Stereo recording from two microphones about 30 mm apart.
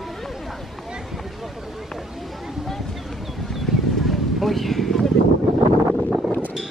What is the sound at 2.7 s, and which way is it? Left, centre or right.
Boat, centre.